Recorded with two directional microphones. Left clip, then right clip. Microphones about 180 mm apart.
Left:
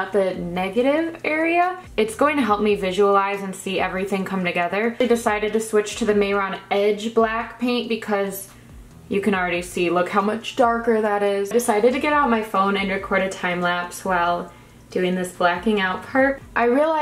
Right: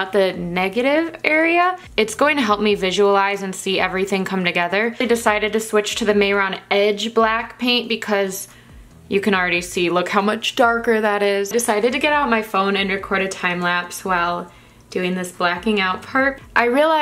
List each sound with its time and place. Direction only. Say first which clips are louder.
0.1 s speech: right 3 dB; 35° right (ahead or behind)